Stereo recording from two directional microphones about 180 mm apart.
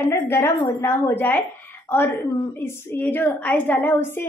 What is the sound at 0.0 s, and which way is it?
A woman's voice, 15° left (ahead or behind).